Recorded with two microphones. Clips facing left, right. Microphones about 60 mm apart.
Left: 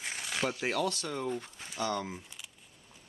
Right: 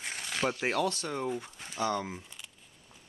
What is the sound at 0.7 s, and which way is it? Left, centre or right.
Speech, right.